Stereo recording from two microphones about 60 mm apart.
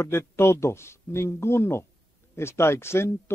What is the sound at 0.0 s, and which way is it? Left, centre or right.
Speech, left.